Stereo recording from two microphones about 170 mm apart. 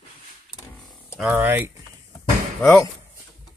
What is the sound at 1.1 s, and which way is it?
Speech, 10° right (ahead or behind).